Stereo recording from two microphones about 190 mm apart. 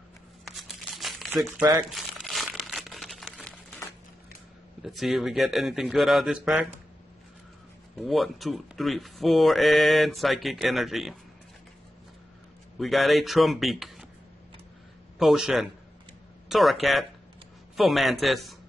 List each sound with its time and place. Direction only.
0.5 s crumpling: centre (ahead or behind)
1.6 s speech: 15° right (ahead or behind)
2.0 s crumpling: centre (ahead or behind)
4.8 s speech: centre (ahead or behind)
8.0 s speech: centre (ahead or behind)
12.7 s speech: centre (ahead or behind)
15.1 s speech: centre (ahead or behind)